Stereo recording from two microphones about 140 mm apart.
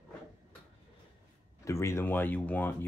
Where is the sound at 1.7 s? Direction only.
20° left (ahead or behind).